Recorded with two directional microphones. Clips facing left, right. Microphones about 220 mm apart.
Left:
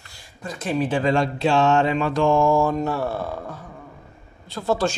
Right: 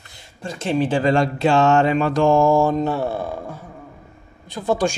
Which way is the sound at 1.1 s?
45° right (ahead or behind).